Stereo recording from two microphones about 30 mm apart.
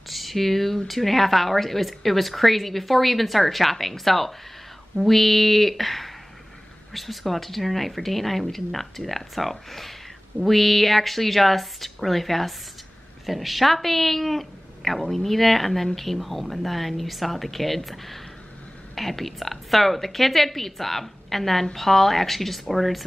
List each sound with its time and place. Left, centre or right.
0.1 s a woman's voice: centre